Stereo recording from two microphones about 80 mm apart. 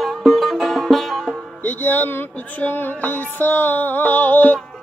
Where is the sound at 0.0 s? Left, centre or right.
Centre.